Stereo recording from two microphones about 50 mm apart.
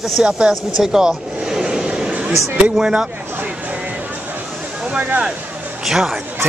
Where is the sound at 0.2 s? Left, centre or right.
Centre.